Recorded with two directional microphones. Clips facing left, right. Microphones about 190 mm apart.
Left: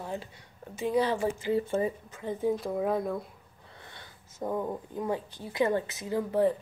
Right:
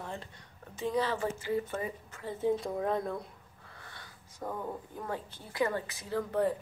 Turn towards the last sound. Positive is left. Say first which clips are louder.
# left 4 dB
turn(degrees=0)  # may be behind; listen again after turning